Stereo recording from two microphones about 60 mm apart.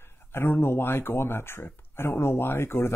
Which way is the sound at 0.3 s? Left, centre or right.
Left.